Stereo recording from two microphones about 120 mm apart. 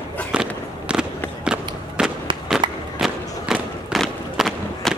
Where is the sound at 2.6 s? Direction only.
40° right (ahead or behind).